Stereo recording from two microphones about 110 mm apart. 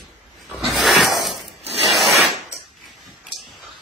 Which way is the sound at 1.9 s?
Centre (ahead or behind).